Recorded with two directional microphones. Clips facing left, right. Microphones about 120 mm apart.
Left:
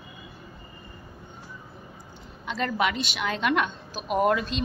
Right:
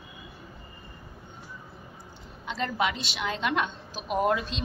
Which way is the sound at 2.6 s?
25° right (ahead or behind).